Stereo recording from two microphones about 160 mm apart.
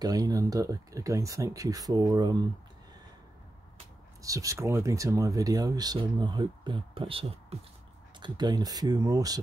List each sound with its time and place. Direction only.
0.0 s speech: 25° right (ahead or behind)
4.2 s speech: 20° right (ahead or behind); by 7.5 s 35° right (ahead or behind)
8.2 s speech: 25° right (ahead or behind)